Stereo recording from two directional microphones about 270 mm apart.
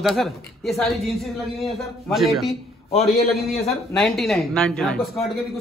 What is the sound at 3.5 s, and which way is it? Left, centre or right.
Speech, left.